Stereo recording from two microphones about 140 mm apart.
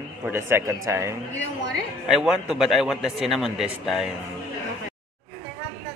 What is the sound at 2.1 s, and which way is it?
A man's voice, 5° right (ahead or behind).